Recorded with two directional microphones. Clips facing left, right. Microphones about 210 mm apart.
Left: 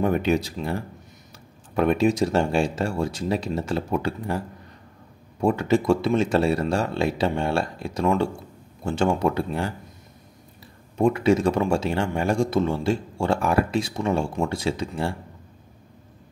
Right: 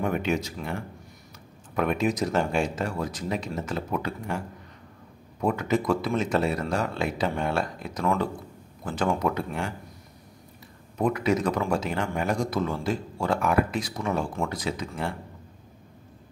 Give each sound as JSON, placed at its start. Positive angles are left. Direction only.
{"t": 0.0, "sound": "speech", "side_deg": 35}
{"t": 5.4, "sound": "speech", "side_deg": 30}
{"t": 11.0, "sound": "speech", "side_deg": 30}